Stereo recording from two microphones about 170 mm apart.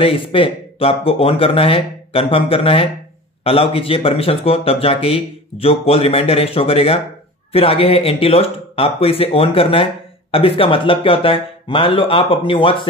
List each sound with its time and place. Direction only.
0.0 s speech: 30° left (ahead or behind)